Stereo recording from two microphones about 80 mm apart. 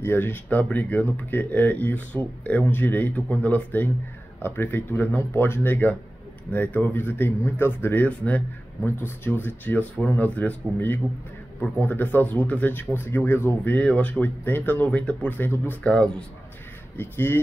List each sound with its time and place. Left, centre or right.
0.0 s speech: left
15.8 s speech: centre
16.9 s speech: left